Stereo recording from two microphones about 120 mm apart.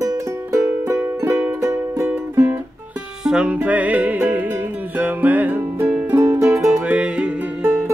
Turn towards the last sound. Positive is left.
turn(degrees=-15)  # may be behind; listen again after turning